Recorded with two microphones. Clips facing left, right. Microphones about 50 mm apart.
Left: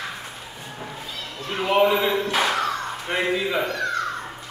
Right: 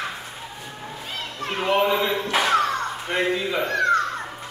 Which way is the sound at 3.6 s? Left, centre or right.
Right.